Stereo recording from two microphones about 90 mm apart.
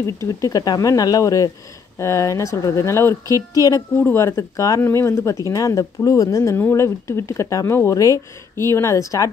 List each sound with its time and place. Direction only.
0.0 s speech: 35° left (ahead or behind)
4.0 s speech: 30° left (ahead or behind)
6.5 s speech: 30° left (ahead or behind)